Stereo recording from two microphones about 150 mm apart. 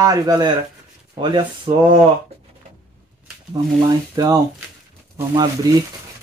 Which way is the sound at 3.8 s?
25° right (ahead or behind).